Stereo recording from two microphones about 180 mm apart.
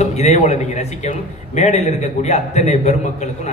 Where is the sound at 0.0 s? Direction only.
40° left (ahead or behind).